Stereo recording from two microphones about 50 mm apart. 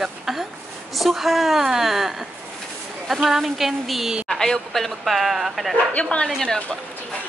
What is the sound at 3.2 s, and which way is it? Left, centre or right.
Speech, centre.